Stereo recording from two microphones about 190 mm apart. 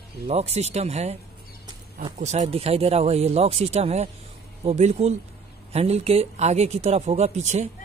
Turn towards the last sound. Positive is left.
turn(degrees=-35)  # may be behind; listen again after turning